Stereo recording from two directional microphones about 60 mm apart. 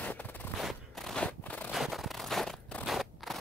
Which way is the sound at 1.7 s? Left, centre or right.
Centre.